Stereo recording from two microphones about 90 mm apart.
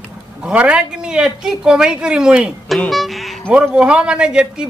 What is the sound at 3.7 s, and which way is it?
Speech, 10° right (ahead or behind).